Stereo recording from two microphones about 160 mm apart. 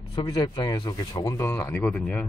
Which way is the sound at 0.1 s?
30° left (ahead or behind).